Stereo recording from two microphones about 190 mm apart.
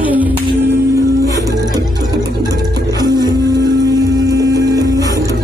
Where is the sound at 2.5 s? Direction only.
20° right (ahead or behind).